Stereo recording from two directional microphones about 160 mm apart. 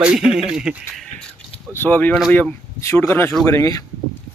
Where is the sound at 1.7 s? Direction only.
10° left (ahead or behind).